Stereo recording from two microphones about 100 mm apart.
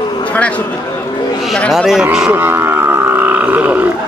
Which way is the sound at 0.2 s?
15° left (ahead or behind).